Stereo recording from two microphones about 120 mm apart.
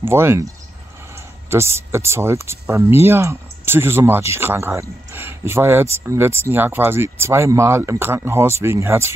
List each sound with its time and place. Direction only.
0.0 s speech: 20° right (ahead or behind)
1.5 s speech: 20° right (ahead or behind)